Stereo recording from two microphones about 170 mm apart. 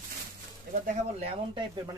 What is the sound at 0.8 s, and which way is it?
Speech, 40° right (ahead or behind).